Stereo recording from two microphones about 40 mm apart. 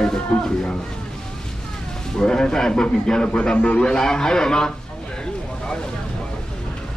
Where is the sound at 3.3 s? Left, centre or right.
Left.